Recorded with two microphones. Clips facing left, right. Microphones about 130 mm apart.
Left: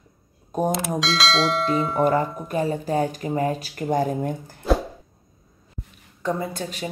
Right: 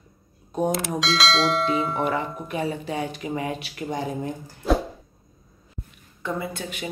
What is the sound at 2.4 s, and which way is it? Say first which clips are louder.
Speech: left 4 dB; 40° left (ahead or behind).